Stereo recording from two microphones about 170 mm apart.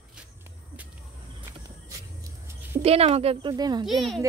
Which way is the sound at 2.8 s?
35° right (ahead or behind).